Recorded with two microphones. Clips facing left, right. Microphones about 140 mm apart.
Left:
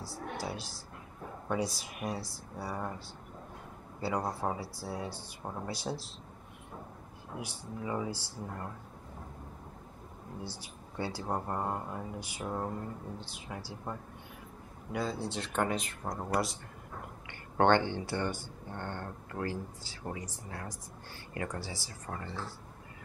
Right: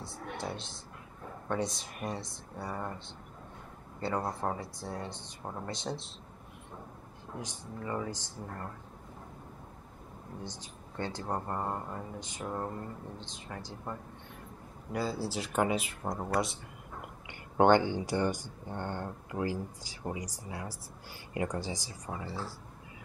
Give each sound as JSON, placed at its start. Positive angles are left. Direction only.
{"t": 0.1, "sound": "speech", "side_deg": 5}
{"t": 4.2, "sound": "speech", "side_deg": 5}
{"t": 7.3, "sound": "speech", "side_deg": 10}
{"t": 10.4, "sound": "speech", "side_deg": 10}
{"t": 14.9, "sound": "speech", "side_deg": -5}
{"t": 17.6, "sound": "speech", "side_deg": -15}